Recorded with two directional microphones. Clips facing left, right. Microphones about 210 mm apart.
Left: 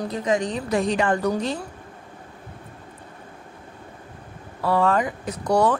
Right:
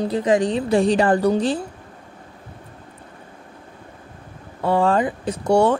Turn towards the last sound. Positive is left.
turn(degrees=-25)  # may be behind; listen again after turning